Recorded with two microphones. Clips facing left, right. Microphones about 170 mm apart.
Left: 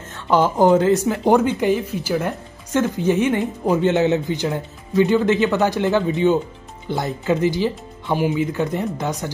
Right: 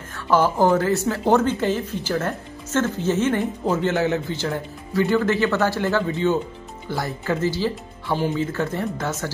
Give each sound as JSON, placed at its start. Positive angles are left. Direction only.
{"t": 0.1, "sound": "speech", "side_deg": 20}